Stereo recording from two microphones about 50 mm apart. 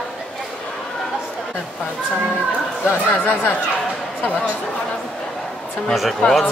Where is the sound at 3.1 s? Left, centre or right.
Left.